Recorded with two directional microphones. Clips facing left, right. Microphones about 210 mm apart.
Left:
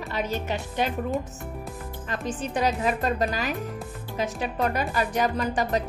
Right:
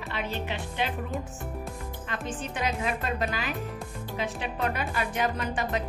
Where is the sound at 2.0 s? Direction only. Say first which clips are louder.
Left 5 dB; 40° left (ahead or behind).